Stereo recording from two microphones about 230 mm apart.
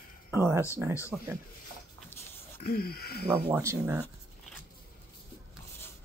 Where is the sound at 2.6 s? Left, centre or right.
Left.